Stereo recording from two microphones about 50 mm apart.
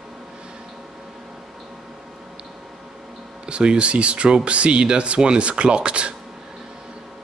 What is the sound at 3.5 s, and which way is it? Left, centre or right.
Speech, right.